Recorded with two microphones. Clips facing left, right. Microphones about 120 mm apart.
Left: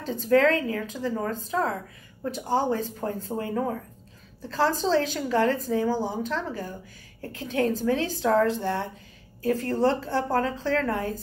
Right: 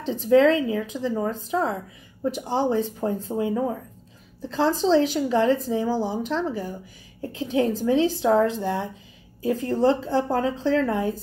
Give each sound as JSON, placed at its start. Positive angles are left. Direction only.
{"t": 0.0, "sound": "a woman's voice", "side_deg": -20}